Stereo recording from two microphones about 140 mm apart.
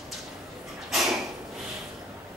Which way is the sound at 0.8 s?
Centre (ahead or behind).